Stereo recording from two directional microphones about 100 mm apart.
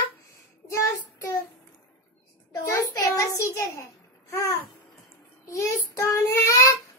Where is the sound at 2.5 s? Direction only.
40° left (ahead or behind).